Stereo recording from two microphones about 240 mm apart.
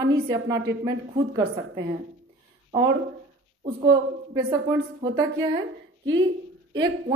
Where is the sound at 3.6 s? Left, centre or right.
Centre.